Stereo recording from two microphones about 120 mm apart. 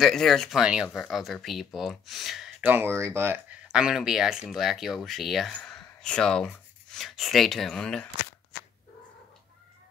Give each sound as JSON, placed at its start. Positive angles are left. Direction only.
{"t": 0.0, "sound": "speech", "side_deg": 5}
{"t": 2.6, "sound": "speech", "side_deg": -15}
{"t": 3.6, "sound": "speech", "side_deg": -5}